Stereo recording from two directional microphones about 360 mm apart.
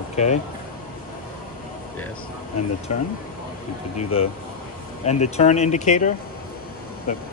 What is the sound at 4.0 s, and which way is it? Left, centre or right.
Speech, centre.